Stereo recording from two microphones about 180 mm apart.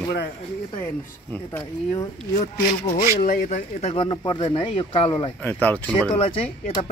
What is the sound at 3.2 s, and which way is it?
Speech, 50° left (ahead or behind).